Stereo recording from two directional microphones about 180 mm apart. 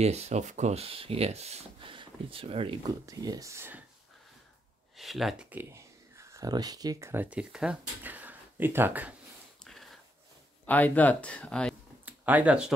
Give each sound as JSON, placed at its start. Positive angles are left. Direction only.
{"t": 0.0, "sound": "speech", "side_deg": -35}
{"t": 3.1, "sound": "speech", "side_deg": -20}
{"t": 4.9, "sound": "speech", "side_deg": 0}
{"t": 9.7, "sound": "a sound", "side_deg": 0}
{"t": 10.7, "sound": "speech", "side_deg": 10}
{"t": 12.1, "sound": "speech", "side_deg": -10}